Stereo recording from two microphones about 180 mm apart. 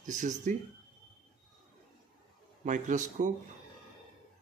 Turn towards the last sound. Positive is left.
turn(degrees=-40)  # may be behind; listen again after turning